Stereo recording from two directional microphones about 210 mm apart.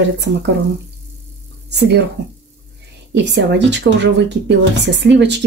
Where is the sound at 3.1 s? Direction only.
55° right (ahead or behind).